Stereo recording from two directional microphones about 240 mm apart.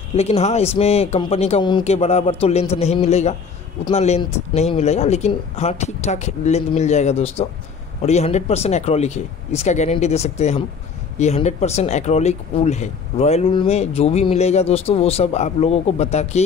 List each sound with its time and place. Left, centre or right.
0.1 s speech: left